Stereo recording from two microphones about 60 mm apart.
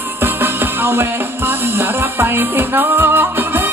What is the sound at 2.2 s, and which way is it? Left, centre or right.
Music, right.